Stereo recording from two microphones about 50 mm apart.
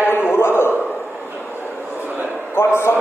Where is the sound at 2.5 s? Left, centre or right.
Left.